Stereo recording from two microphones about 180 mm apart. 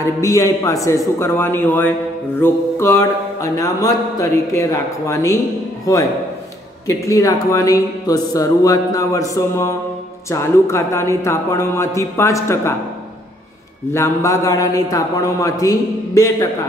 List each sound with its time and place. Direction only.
0.0 s a man's voice: 20° left (ahead or behind)
13.9 s a man's voice: 15° left (ahead or behind)